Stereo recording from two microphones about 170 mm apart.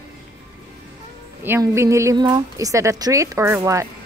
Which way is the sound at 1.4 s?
15° right (ahead or behind).